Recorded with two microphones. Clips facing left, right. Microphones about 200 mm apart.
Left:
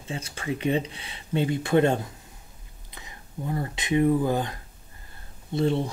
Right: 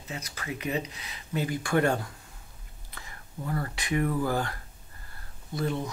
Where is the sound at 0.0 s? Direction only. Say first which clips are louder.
Left 5 dB; 30° left (ahead or behind).